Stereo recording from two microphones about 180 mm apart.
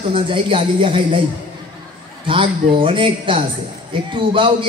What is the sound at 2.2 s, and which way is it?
A man's voice, 30° right (ahead or behind).